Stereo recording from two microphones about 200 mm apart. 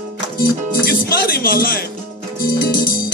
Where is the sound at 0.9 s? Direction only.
50° left (ahead or behind).